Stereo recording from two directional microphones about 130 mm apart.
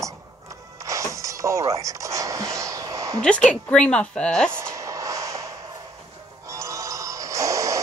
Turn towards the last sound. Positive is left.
turn(degrees=-25)  # may be behind; listen again after turning